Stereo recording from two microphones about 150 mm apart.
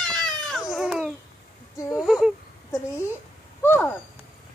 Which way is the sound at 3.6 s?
15° left (ahead or behind).